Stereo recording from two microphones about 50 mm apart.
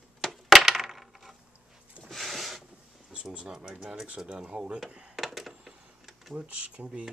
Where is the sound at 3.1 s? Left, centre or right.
Centre.